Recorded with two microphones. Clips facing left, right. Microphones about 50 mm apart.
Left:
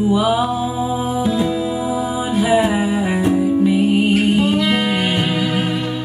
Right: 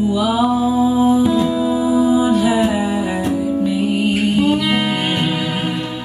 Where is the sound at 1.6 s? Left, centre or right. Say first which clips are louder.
Right 5 dB; left.